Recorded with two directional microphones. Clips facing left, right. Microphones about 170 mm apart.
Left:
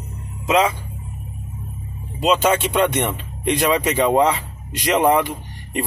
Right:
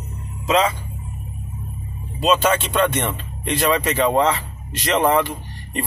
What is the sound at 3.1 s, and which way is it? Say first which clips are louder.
Speech: left 3 dB; 15° left (ahead or behind).